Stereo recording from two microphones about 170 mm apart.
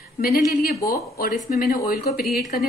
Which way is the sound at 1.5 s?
55° left (ahead or behind).